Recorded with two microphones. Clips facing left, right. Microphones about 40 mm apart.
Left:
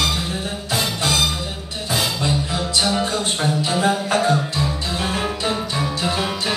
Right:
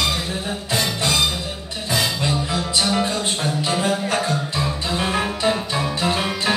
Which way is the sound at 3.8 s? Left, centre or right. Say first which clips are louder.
Left 4 dB; centre.